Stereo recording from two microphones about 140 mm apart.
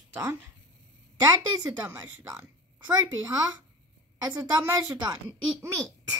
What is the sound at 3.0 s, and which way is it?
A woman's voice, 25° right (ahead or behind).